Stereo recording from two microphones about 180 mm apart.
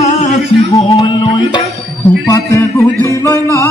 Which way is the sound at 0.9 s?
25° left (ahead or behind).